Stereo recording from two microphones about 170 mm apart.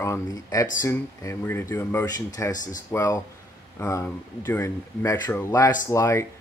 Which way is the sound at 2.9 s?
20° left (ahead or behind).